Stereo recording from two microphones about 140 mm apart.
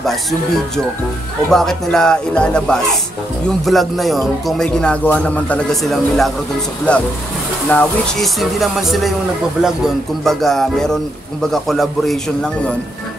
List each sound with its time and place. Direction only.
1.5 s speech: 5° left (ahead or behind)
10.2 s speech: centre (ahead or behind)